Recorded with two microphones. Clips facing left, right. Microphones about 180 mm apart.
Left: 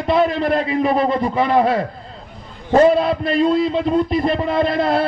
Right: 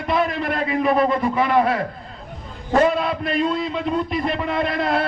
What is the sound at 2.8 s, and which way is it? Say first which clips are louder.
A man's voice: left 6 dB; 35° left (ahead or behind).